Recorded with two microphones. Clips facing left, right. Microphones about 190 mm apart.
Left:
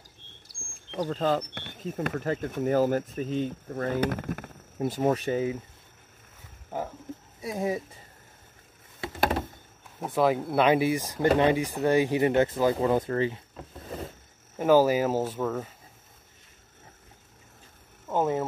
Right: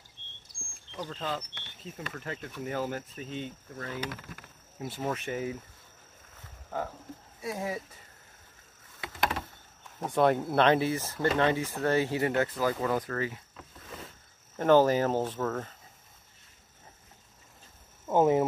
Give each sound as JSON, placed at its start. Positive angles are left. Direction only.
{"t": 1.0, "sound": "speech", "side_deg": 45}
{"t": 7.4, "sound": "speech", "side_deg": 20}
{"t": 9.9, "sound": "speech", "side_deg": 5}
{"t": 13.7, "sound": "boat", "side_deg": 35}
{"t": 14.6, "sound": "speech", "side_deg": 10}
{"t": 18.0, "sound": "a sound", "side_deg": -15}